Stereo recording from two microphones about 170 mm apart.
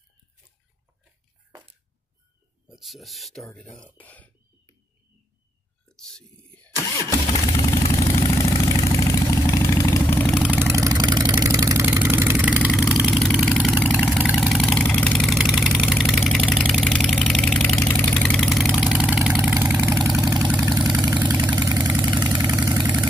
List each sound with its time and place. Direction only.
2.7 s speech: centre (ahead or behind)
5.9 s whispering: 5° left (ahead or behind)
6.9 s engine starting: 20° left (ahead or behind)
8.2 s vehicle: 20° left (ahead or behind)
10.2 s vehicle: centre (ahead or behind)
10.5 s vehicle: 15° right (ahead or behind)
14.4 s vehicle: 5° left (ahead or behind)
20.6 s vehicle: 20° right (ahead or behind)